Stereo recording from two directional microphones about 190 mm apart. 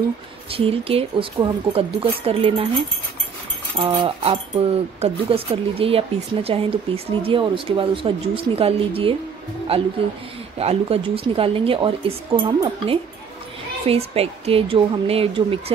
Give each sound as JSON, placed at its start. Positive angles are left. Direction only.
{"t": 0.5, "sound": "speech", "side_deg": -30}
{"t": 3.7, "sound": "speech", "side_deg": -30}
{"t": 10.6, "sound": "a woman's voice", "side_deg": -30}